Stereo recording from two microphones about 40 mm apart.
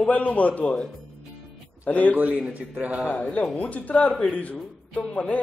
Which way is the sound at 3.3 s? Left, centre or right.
Left.